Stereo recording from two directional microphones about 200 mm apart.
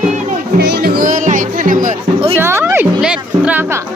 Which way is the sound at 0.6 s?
50° right (ahead or behind).